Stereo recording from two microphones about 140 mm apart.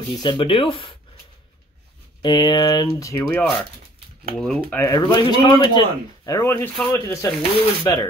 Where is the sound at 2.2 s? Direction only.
30° left (ahead or behind); by 3.5 s 15° left (ahead or behind).